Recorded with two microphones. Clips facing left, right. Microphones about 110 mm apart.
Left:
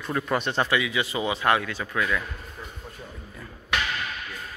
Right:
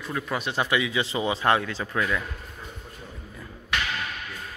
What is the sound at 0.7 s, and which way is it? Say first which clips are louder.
A man's voice: even; 25° right (ahead or behind).